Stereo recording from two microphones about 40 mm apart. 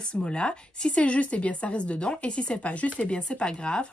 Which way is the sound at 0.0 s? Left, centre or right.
Left.